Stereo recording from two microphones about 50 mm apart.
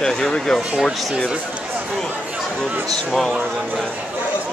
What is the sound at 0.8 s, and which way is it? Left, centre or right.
Speech, centre.